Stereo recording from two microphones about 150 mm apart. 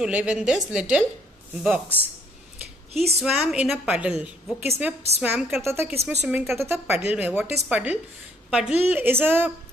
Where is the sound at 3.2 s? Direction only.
5° right (ahead or behind).